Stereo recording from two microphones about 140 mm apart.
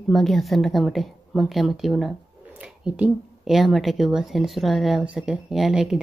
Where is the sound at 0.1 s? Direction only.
Centre (ahead or behind).